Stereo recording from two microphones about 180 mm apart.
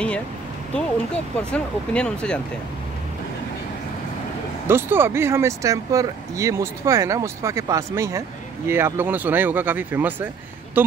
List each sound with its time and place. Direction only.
0.7 s speech: 5° left (ahead or behind)
4.6 s speech: 15° right (ahead or behind)